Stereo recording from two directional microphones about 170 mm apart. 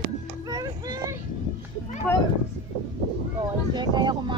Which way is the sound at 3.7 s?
25° right (ahead or behind).